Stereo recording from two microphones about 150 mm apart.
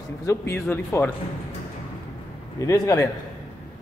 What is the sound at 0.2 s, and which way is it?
Speech, 15° left (ahead or behind).